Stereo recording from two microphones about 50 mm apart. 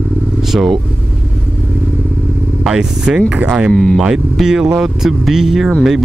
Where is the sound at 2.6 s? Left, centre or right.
Centre.